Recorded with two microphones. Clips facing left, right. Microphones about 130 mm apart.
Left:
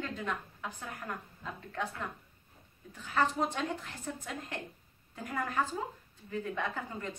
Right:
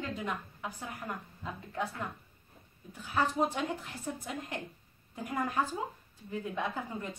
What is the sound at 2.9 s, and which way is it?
A woman's voice, 10° right (ahead or behind).